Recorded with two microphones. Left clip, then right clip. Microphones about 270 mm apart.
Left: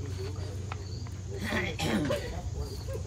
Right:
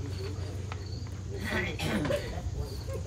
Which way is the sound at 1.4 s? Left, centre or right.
Left.